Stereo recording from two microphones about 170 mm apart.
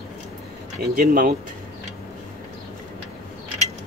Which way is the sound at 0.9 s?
55° right (ahead or behind).